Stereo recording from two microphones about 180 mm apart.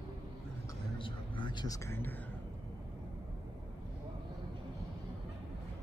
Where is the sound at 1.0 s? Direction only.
25° left (ahead or behind); by 2.2 s 10° left (ahead or behind).